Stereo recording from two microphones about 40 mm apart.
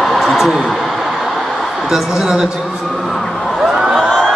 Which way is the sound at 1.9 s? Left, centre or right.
Centre.